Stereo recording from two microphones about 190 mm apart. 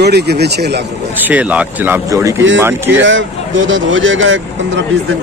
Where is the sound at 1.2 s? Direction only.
10° right (ahead or behind).